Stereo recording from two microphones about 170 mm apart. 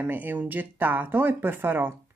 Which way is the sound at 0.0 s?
10° right (ahead or behind).